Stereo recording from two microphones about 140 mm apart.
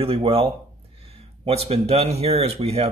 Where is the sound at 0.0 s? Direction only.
45° right (ahead or behind).